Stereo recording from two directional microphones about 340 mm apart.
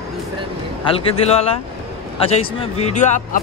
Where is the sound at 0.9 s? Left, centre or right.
Centre.